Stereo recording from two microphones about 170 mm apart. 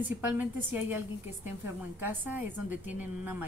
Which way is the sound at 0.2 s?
10° right (ahead or behind).